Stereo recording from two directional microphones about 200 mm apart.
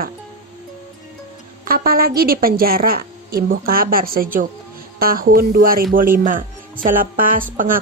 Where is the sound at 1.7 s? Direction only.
50° right (ahead or behind).